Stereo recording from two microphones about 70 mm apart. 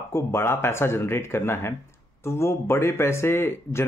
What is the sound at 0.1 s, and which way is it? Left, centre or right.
Speech, left.